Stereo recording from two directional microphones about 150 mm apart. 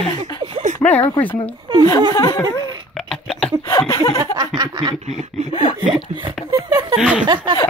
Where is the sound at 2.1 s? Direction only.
25° left (ahead or behind).